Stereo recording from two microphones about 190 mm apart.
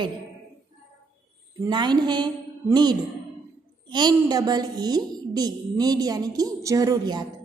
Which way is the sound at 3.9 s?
20° right (ahead or behind).